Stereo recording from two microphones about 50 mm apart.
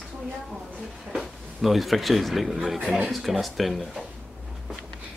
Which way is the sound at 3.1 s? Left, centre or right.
Centre.